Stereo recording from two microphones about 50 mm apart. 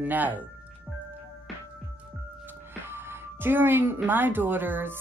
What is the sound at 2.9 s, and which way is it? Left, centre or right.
Music, right.